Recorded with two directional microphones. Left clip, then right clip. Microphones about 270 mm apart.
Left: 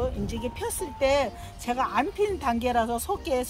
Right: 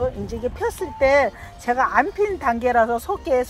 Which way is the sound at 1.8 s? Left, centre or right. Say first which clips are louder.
Right 6 dB; centre.